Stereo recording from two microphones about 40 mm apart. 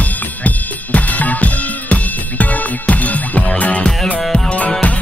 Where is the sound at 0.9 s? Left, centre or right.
Left.